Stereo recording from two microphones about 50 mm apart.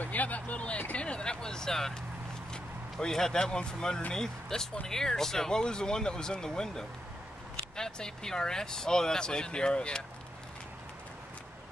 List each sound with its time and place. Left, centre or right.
0.0 s speech: left